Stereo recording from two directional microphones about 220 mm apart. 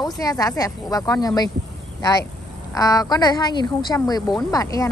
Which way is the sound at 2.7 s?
15° left (ahead or behind).